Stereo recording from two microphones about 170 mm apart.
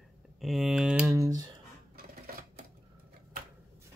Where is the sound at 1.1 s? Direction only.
20° right (ahead or behind).